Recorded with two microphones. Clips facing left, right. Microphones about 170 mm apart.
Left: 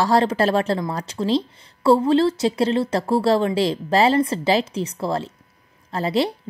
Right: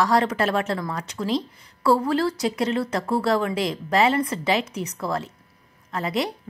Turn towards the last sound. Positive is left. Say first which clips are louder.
# left 5 dB
turn(degrees=30)  # may be behind; listen again after turning